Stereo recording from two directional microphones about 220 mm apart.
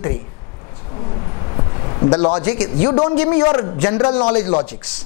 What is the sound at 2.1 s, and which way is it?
A man's voice, 25° left (ahead or behind).